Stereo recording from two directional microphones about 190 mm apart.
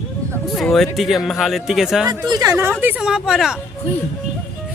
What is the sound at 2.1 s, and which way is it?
Speech, 20° right (ahead or behind).